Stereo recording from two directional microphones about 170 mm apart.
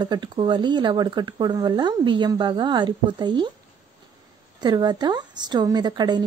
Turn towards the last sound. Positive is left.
turn(degrees=-25)  # may be behind; listen again after turning